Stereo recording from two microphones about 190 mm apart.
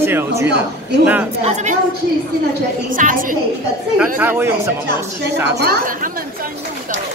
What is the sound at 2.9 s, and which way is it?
Speech, 45° right (ahead or behind).